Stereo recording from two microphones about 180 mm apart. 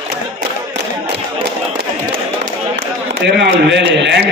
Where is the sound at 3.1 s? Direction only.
75° right (ahead or behind).